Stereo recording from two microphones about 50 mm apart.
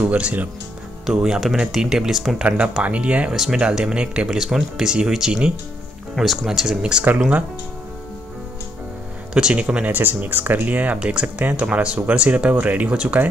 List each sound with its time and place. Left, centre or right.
0.0 s speech: right
1.0 s speech: centre
2.4 s speech: right
4.3 s speech: centre
6.1 s speech: centre
9.3 s speech: right
9.9 s speech: right
12.9 s speech: centre